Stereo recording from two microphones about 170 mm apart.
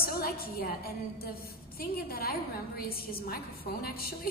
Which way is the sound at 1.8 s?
65° left (ahead or behind).